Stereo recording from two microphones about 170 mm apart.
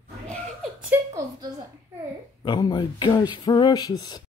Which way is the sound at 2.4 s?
25° left (ahead or behind).